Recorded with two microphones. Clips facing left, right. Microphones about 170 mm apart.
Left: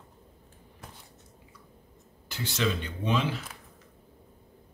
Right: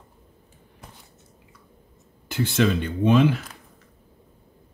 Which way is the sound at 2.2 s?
55° right (ahead or behind).